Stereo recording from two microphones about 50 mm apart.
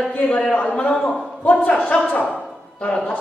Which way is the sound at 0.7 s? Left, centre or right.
Left.